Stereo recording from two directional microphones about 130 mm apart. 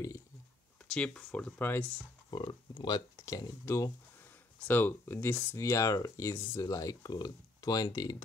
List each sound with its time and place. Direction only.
0.9 s speech: 5° left (ahead or behind)
2.3 s speech: 35° left (ahead or behind); by 5.6 s 15° left (ahead or behind)
5.6 s speech: 25° left (ahead or behind)